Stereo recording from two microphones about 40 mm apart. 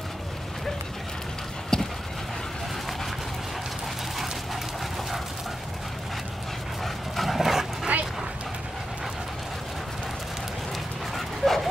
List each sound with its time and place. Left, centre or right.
1.7 s dog: centre
6.8 s dog: centre
7.9 s dog: right
11.1 s dog: centre